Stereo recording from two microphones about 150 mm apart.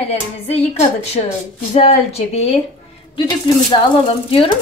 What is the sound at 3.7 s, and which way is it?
Speech, 35° left (ahead or behind).